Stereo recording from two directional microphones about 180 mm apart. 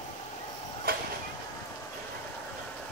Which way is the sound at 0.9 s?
55° right (ahead or behind).